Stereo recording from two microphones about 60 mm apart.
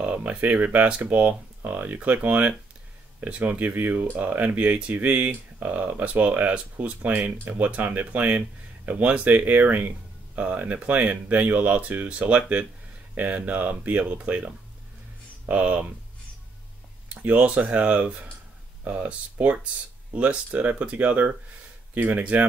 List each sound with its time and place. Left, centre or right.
0.0 s speech: right
17.1 s speech: right